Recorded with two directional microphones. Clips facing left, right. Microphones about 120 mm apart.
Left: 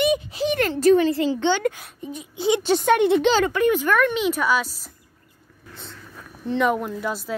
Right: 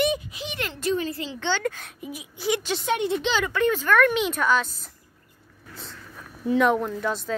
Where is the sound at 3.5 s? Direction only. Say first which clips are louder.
Left 2 dB; 15° left (ahead or behind).